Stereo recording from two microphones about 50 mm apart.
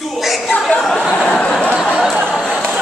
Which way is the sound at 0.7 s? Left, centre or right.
Centre.